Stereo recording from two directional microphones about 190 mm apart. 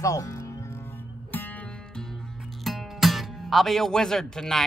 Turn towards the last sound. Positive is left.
turn(degrees=5)  # may be behind; listen again after turning